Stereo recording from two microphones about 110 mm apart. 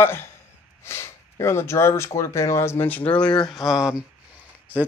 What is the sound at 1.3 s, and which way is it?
Speech, 25° left (ahead or behind).